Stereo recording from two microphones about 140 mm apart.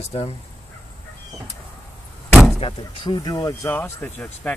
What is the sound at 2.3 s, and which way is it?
Vehicle, 5° right (ahead or behind).